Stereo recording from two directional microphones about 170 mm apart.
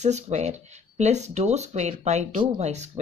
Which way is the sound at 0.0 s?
40° right (ahead or behind).